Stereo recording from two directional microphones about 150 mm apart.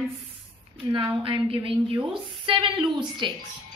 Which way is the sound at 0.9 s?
30° right (ahead or behind).